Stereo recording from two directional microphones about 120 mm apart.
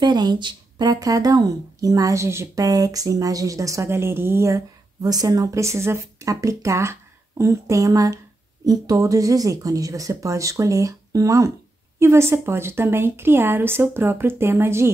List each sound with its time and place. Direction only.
0.0 s speech: 35° right (ahead or behind); by 14.9 s 20° right (ahead or behind)